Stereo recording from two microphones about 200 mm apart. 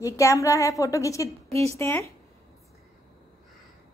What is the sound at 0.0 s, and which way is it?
A woman's voice, 15° left (ahead or behind).